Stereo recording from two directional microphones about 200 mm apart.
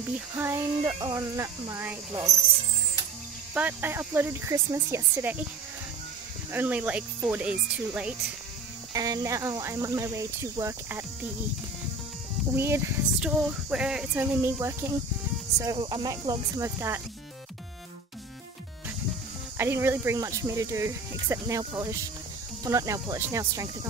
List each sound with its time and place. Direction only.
0.4 s speech: 10° right (ahead or behind)
3.5 s speech: 10° right (ahead or behind)
6.5 s speech: 10° right (ahead or behind)
8.9 s speech: 20° right (ahead or behind)
12.5 s speech: 15° right (ahead or behind)
19.5 s speech: 10° right (ahead or behind)